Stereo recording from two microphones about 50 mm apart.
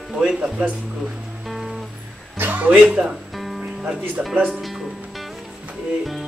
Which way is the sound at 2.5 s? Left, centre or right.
Right.